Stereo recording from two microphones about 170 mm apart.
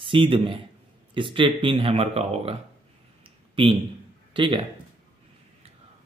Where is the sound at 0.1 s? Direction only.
30° right (ahead or behind).